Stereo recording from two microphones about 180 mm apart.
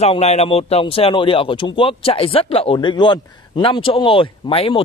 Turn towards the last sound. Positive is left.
turn(degrees=30)  # may be behind; listen again after turning